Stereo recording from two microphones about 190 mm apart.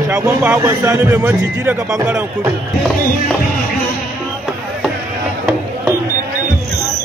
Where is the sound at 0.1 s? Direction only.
15° right (ahead or behind).